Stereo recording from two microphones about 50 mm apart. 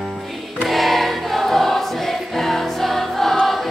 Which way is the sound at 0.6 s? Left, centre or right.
Centre.